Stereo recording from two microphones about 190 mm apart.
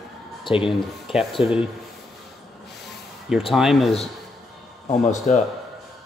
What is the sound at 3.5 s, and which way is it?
Speech, centre (ahead or behind).